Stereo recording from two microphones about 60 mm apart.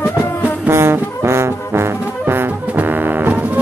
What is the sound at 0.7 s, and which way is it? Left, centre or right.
Brass instrument, right.